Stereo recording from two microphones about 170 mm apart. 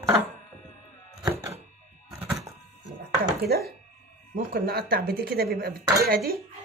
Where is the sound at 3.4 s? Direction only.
65° right (ahead or behind).